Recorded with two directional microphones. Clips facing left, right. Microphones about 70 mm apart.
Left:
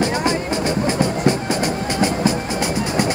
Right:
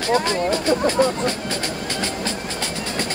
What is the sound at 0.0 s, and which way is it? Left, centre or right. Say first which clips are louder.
Music: even; left.